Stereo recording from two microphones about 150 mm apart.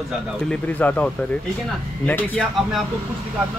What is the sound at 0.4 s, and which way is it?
Speech, 5° left (ahead or behind).